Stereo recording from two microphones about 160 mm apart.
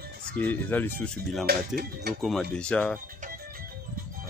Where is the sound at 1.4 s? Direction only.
90° right.